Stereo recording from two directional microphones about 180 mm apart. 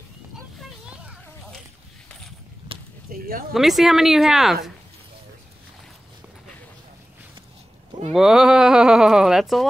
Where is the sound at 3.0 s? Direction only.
55° right (ahead or behind).